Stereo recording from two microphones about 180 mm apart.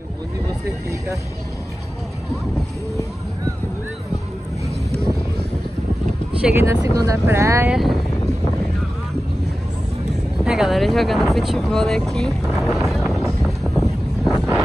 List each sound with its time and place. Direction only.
6.4 s speech: 15° right (ahead or behind)
7.7 s speech: centre (ahead or behind)
10.4 s speech: 5° right (ahead or behind)
13.1 s wind noise: centre (ahead or behind)